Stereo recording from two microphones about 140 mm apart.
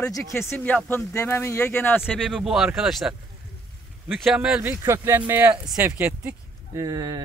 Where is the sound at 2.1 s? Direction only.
Centre (ahead or behind).